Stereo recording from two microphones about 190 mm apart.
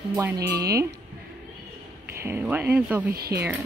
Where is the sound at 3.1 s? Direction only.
55° right (ahead or behind).